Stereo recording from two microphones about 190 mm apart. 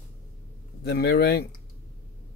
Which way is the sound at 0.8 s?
55° left (ahead or behind).